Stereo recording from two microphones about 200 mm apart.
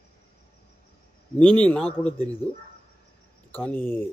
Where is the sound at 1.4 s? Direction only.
5° left (ahead or behind).